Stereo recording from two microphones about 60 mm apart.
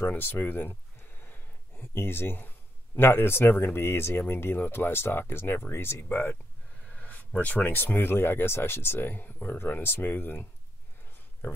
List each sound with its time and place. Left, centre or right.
0.1 s speech: left
1.2 s a sound: left
3.0 s speech: left
11.4 s speech: left